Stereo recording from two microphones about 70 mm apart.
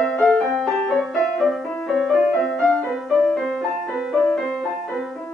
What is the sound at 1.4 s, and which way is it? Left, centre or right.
Music, centre.